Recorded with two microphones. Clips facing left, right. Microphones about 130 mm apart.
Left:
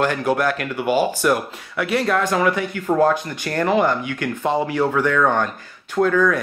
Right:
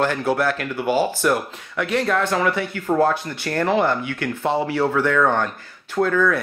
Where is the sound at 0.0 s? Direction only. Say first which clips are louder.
Left 1 dB; 15° left (ahead or behind).